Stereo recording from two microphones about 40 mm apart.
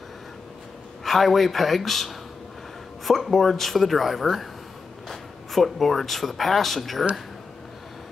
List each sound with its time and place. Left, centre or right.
1.0 s a woman's voice: centre